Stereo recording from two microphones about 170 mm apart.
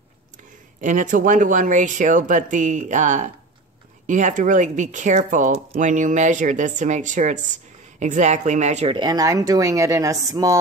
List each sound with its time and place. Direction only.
0.7 s speech: 45° right (ahead or behind)
8.9 s speech: 25° right (ahead or behind)